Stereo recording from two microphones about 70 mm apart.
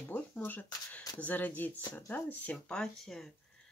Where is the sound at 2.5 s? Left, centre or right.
Centre.